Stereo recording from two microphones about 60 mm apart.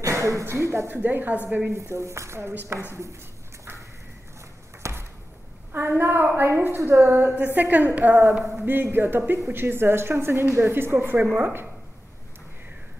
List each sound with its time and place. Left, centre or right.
0.0 s a sound: right
0.5 s speech: right
0.8 s a woman's voice: right
1.8 s speech: right
4.8 s a sound: right
5.7 s a woman's voice: right